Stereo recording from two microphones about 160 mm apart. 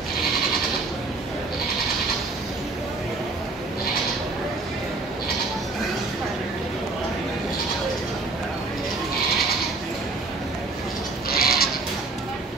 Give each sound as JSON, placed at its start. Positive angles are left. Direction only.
{"t": 11.2, "sound": "goat", "side_deg": 70}